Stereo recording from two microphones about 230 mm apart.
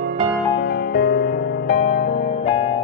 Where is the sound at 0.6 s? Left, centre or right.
Left.